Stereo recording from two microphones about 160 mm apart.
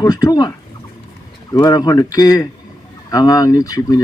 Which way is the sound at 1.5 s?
25° left (ahead or behind).